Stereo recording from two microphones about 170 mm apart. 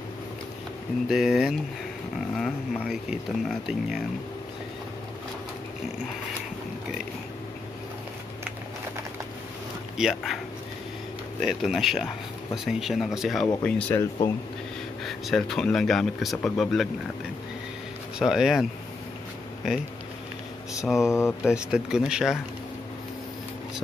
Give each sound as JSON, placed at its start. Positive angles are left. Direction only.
{"t": 1.0, "sound": "speech", "side_deg": -5}
{"t": 9.9, "sound": "speech", "side_deg": 0}
{"t": 11.4, "sound": "speech", "side_deg": 0}
{"t": 18.2, "sound": "speech", "side_deg": 0}
{"t": 21.0, "sound": "speech", "side_deg": 15}
{"t": 21.3, "sound": "speech", "side_deg": -5}